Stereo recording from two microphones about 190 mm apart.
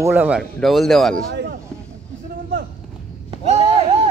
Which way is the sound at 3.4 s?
30° right (ahead or behind).